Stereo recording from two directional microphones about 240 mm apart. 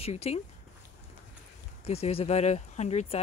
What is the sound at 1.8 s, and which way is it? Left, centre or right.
Speech, left.